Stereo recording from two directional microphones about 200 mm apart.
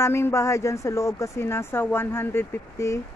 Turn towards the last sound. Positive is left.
turn(degrees=15)  # may be behind; listen again after turning